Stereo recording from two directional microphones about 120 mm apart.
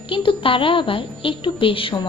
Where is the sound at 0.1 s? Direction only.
45° left (ahead or behind).